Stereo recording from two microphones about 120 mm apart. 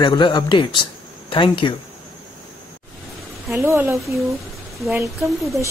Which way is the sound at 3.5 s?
20° right (ahead or behind).